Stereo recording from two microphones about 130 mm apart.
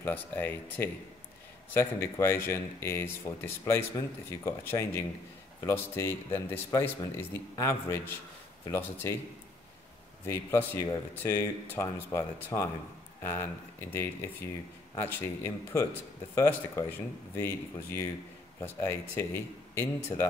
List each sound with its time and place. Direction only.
0.0 s speech: 15° left (ahead or behind)
10.2 s speech: 20° left (ahead or behind)
17.4 s speech: 20° left (ahead or behind)